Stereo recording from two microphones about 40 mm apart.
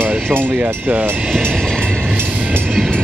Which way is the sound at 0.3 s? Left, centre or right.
Right.